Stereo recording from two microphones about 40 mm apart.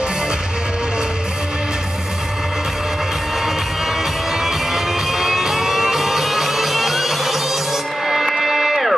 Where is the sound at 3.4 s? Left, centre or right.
Centre.